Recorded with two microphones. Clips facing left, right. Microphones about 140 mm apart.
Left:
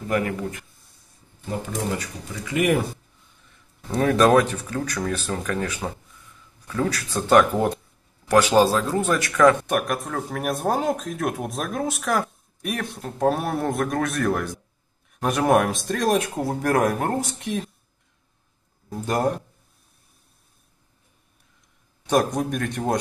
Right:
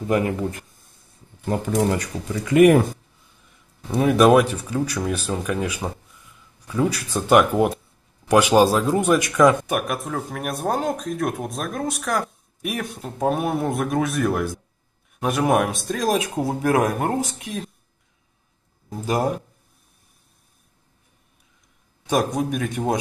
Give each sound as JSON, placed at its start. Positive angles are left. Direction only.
{"t": 0.1, "sound": "speech", "side_deg": -20}
{"t": 2.5, "sound": "speech", "side_deg": -45}
{"t": 3.4, "sound": "speech", "side_deg": -10}
{"t": 9.7, "sound": "speech", "side_deg": 0}
{"t": 18.9, "sound": "speech", "side_deg": -5}
{"t": 22.0, "sound": "speech", "side_deg": 0}